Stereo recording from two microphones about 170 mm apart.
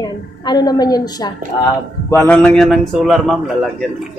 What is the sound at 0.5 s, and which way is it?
A woman's voice, 25° left (ahead or behind).